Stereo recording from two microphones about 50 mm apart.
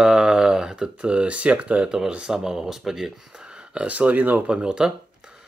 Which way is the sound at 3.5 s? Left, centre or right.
Right.